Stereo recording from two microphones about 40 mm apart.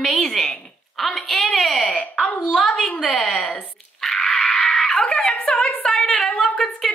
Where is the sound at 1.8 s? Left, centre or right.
Left.